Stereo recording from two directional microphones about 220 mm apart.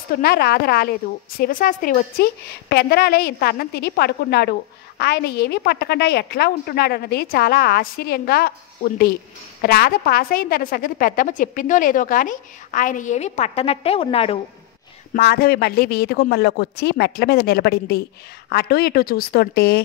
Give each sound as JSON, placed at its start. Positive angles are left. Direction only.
{"t": 0.1, "sound": "a woman's voice", "side_deg": 45}
{"t": 15.1, "sound": "a woman's voice", "side_deg": 45}